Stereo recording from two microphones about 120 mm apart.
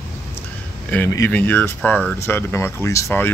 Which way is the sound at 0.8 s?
15° left (ahead or behind).